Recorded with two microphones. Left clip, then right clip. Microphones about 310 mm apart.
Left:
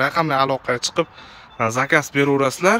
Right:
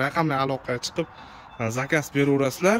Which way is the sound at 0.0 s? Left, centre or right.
Centre.